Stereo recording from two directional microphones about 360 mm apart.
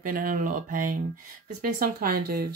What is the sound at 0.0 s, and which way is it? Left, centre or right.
Speech, right.